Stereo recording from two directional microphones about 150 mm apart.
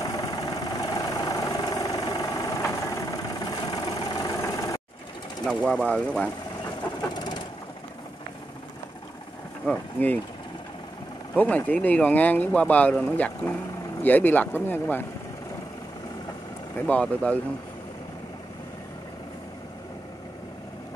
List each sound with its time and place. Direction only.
0.0 s vehicle: 25° left (ahead or behind)
5.4 s speech: 5° left (ahead or behind)
7.2 s vehicle: 30° left (ahead or behind)
9.7 s speech: 10° left (ahead or behind)
11.3 s speech: 10° left (ahead or behind)
16.7 s speech: 10° left (ahead or behind)